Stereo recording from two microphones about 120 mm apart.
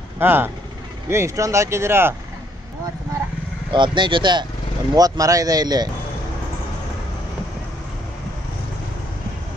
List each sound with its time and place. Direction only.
0.2 s speech: 15° right (ahead or behind)
3.7 s speech: 40° right (ahead or behind)